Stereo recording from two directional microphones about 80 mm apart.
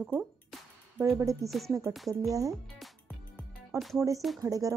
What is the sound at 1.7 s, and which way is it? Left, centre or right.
Music, right.